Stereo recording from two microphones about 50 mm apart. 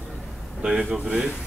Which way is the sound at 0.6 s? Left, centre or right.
Centre.